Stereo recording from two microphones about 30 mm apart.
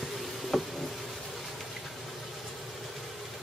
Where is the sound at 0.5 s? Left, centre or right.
Centre.